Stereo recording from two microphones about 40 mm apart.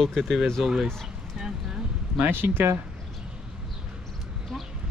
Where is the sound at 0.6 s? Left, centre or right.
Centre.